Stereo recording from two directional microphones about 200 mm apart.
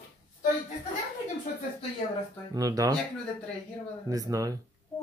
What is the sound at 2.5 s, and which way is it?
Speech, 20° right (ahead or behind).